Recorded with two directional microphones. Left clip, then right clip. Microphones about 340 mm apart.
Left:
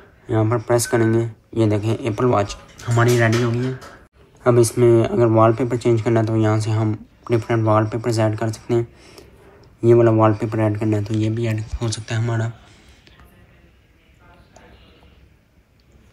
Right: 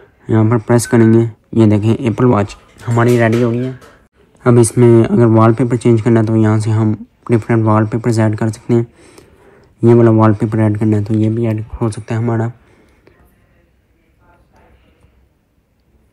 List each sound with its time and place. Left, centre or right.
0.2 s speech: right
4.4 s speech: right
11.3 s speech: centre